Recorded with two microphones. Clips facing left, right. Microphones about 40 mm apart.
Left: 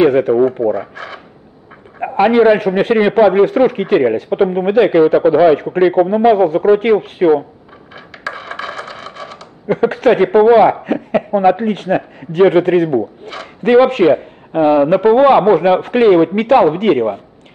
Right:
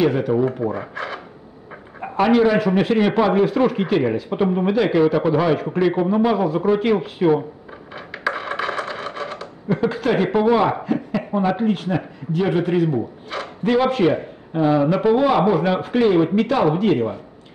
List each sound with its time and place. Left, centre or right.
0.3 s a man's voice: left
0.7 s a sound: centre
2.0 s a man's voice: left
3.0 s a man's voice: left
3.4 s a man's voice: left
6.7 s speech: left
7.9 s a sound: centre
9.7 s speech: left
10.7 s a man's voice: left
14.0 s speech: left